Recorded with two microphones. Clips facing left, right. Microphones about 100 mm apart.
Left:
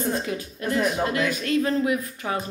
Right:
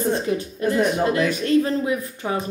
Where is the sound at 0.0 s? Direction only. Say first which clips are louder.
Right 5 dB; 30° right (ahead or behind).